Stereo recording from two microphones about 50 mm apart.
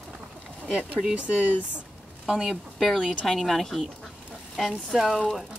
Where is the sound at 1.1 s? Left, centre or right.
Right.